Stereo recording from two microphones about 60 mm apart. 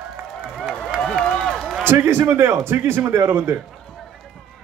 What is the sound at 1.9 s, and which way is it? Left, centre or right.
Speech, right.